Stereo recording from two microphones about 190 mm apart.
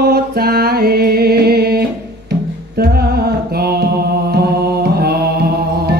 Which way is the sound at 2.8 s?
55° right (ahead or behind).